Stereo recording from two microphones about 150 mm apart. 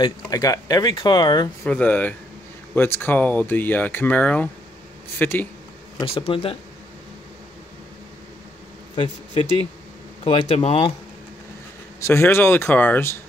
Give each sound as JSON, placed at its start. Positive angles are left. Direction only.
{"t": 0.0, "sound": "speech", "side_deg": 25}
{"t": 1.7, "sound": "speech", "side_deg": 10}
{"t": 6.0, "sound": "speech", "side_deg": 40}
{"t": 8.9, "sound": "speech", "side_deg": 40}
{"t": 12.0, "sound": "speech", "side_deg": 15}